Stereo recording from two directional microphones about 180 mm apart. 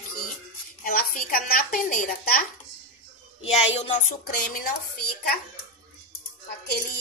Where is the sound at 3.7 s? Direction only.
40° left (ahead or behind).